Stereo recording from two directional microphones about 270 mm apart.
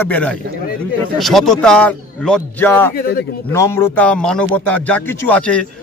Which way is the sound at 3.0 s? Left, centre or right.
Left.